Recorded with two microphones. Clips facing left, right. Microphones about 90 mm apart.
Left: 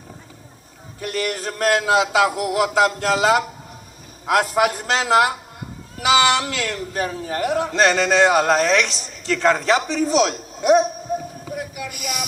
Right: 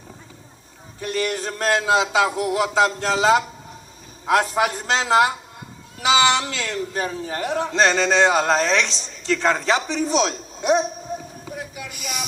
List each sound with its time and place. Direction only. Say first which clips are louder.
1.0 s a man's voice: even; 25° right (ahead or behind)
11.4 s vehicle: left 4 dB; 25° right (ahead or behind)